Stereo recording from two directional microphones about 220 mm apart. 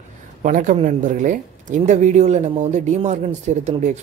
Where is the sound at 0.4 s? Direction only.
35° right (ahead or behind).